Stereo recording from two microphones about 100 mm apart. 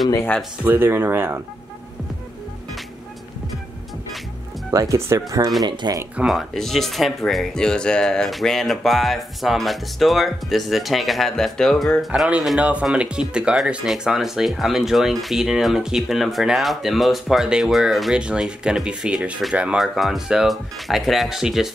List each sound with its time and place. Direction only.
0.7 s speech: 20° right (ahead or behind)
4.6 s speech: 30° right (ahead or behind)
5.7 s speech: 50° right (ahead or behind)
6.2 s speech: centre (ahead or behind)
12.3 s speech: 10° right (ahead or behind)
19.8 s speech: centre (ahead or behind)